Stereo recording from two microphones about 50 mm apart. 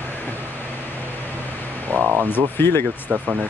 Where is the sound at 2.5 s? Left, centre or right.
Left.